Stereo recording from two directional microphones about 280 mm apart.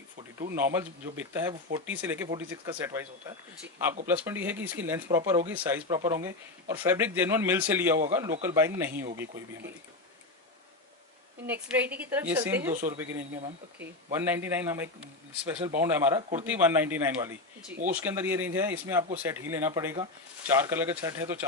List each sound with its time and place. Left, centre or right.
0.7 s a woman's voice: centre
4.1 s a woman's voice: centre
11.4 s a woman's voice: centre